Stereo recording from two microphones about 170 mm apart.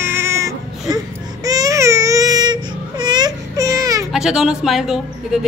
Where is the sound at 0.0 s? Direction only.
15° right (ahead or behind).